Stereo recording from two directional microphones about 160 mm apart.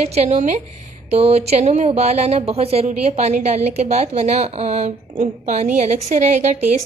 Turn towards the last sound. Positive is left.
turn(degrees=-45)  # may be behind; listen again after turning